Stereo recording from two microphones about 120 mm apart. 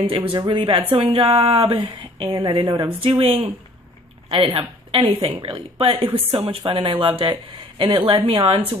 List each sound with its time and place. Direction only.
0.1 s speech: 50° right (ahead or behind)